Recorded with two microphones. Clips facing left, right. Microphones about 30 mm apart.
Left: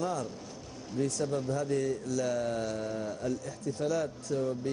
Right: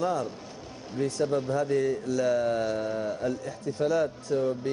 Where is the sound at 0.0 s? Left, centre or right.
Right.